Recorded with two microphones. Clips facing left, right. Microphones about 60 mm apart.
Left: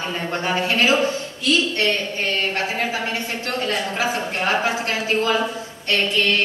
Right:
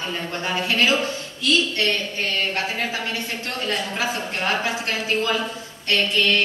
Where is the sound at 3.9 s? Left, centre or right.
Centre.